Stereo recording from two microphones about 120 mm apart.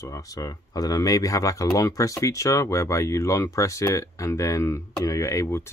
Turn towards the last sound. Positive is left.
turn(degrees=25)  # may be behind; listen again after turning